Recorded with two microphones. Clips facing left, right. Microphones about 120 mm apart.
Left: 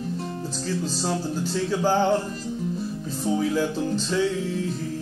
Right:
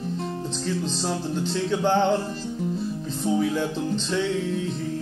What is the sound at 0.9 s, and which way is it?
Music, 5° left (ahead or behind).